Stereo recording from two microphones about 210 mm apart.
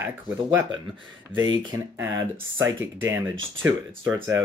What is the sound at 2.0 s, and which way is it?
Speech, 60° right (ahead or behind).